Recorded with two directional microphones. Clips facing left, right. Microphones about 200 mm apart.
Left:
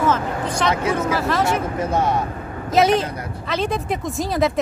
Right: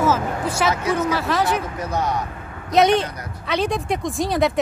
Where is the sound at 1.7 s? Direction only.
25° left (ahead or behind).